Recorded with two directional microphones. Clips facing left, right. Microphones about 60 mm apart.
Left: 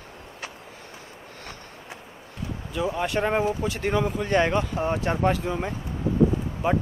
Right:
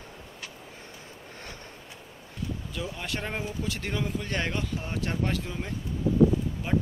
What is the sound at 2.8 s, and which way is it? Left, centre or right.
Speech, left.